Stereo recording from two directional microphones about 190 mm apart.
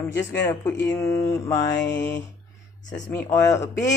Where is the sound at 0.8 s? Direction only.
15° left (ahead or behind).